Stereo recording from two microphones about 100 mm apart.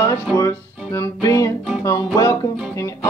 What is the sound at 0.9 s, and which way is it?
Music, 30° left (ahead or behind).